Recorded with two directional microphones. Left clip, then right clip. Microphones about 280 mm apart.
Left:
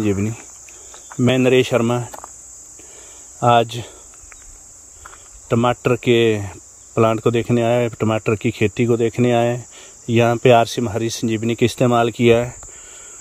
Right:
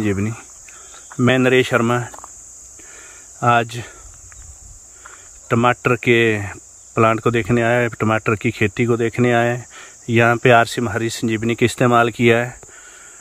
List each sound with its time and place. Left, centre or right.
0.0 s speech: centre
2.0 s cricket: left
3.3 s speech: centre
5.5 s speech: centre